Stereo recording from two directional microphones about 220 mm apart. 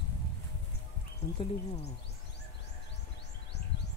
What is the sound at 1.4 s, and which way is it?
Speech, 25° left (ahead or behind).